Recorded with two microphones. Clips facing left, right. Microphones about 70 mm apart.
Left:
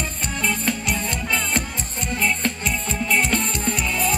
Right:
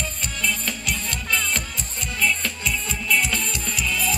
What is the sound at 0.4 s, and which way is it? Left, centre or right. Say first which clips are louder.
Music: left 4 dB; left.